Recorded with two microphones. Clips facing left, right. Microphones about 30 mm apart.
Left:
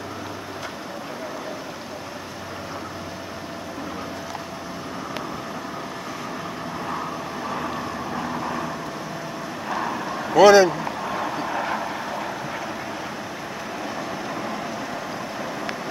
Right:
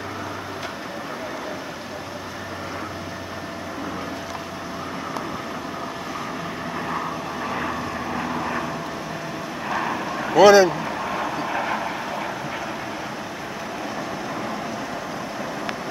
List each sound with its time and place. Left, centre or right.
6.9 s vehicle: centre
9.7 s a sound: centre
14.3 s vehicle: centre